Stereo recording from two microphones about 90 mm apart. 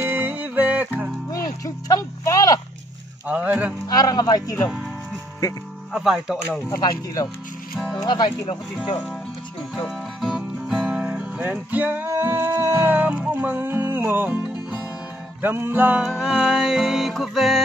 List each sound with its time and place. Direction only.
0.0 s music: 20° right (ahead or behind)
1.3 s a sound: 40° left (ahead or behind)
3.3 s speech: 15° right (ahead or behind)
3.8 s speech: 45° left (ahead or behind)
5.9 s speech: 5° right (ahead or behind)
6.8 s speech: 45° left (ahead or behind)
9.8 s music: 5° right (ahead or behind)
16.0 s music: 5° right (ahead or behind)